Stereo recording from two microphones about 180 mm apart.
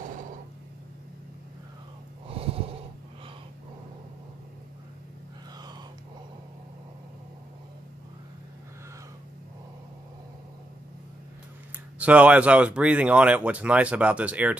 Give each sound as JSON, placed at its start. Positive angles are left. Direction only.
{"t": 2.2, "sound": "snort", "side_deg": -30}
{"t": 12.0, "sound": "speech", "side_deg": -10}